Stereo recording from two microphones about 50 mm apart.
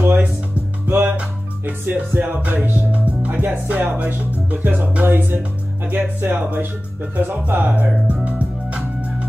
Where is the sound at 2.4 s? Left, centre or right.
Right.